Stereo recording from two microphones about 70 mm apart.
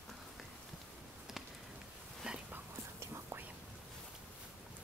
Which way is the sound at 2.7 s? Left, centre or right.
Right.